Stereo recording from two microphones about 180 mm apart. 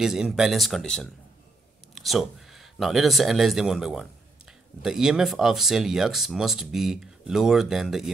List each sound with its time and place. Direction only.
0.0 s speech: centre (ahead or behind)